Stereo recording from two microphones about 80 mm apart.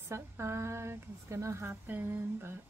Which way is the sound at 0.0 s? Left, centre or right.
Right.